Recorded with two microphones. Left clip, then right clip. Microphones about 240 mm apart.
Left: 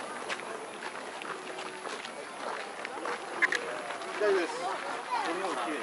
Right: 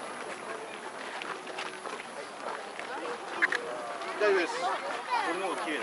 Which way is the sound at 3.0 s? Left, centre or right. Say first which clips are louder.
Left 1 dB; centre.